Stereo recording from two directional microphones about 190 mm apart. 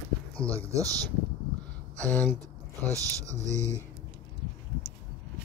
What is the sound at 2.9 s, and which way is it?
Speech, 15° right (ahead or behind).